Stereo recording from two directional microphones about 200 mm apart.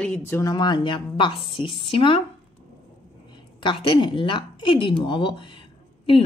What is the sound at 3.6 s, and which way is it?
A woman's voice, 25° left (ahead or behind).